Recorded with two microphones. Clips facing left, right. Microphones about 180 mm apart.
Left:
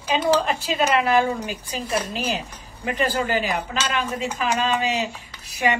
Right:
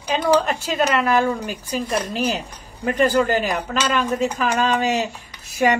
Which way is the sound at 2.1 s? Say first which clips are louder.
Right 4 dB; 45° right (ahead or behind).